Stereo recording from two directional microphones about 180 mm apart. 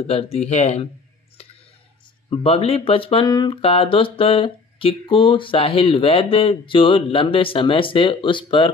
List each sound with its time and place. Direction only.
0.0 s speech: 35° left (ahead or behind)
2.2 s speech: 30° left (ahead or behind)